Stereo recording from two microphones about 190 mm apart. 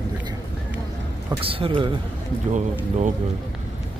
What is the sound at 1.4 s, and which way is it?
Speech, 30° right (ahead or behind).